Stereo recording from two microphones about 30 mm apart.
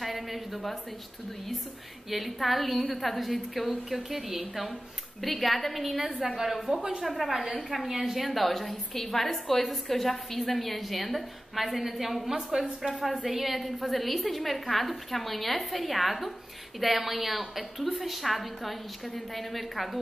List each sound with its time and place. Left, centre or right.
0.0 s a sound: centre
2.0 s a woman's voice: centre
6.7 s speech: right
7.1 s a woman's voice: centre